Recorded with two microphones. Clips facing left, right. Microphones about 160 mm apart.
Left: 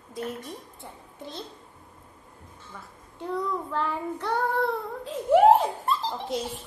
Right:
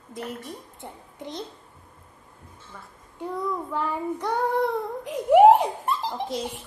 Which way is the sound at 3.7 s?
15° right (ahead or behind).